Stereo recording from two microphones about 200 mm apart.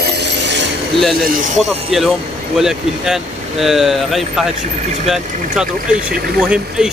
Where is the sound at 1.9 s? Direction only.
Centre (ahead or behind).